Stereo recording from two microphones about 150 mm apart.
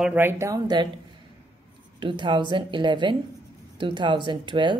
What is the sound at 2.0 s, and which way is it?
Speech, 35° right (ahead or behind).